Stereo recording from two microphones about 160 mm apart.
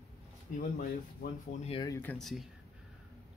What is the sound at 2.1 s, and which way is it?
Speech, centre (ahead or behind).